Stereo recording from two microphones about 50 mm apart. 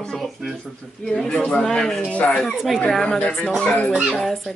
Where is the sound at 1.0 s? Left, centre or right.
Centre.